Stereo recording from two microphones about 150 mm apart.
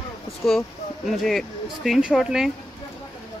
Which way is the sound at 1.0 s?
Centre (ahead or behind).